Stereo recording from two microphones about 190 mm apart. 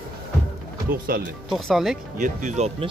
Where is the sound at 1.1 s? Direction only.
50° right (ahead or behind).